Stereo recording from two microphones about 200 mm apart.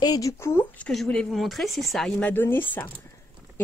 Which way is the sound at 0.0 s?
15° left (ahead or behind).